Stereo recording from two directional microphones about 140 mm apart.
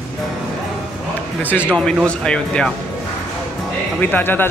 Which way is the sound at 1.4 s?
15° left (ahead or behind).